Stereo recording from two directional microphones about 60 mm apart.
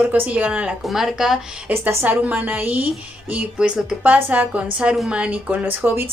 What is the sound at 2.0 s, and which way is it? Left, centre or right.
Speech, right.